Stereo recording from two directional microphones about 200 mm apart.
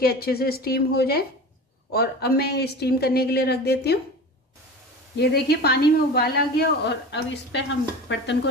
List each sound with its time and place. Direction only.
0.0 s a woman's voice: 50° left (ahead or behind)
5.2 s a woman's voice: 55° left (ahead or behind)